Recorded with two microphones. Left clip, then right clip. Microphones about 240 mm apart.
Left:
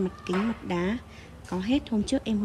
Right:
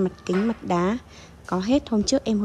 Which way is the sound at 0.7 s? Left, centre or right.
Centre.